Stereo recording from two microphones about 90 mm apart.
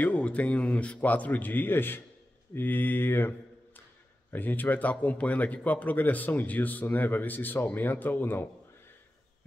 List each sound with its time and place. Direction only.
0.0 s a man's voice: 15° left (ahead or behind)